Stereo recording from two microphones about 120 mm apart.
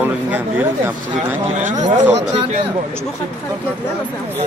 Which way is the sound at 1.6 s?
90° right.